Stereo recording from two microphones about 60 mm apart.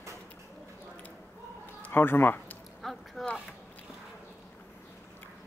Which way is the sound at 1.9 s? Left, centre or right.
Left.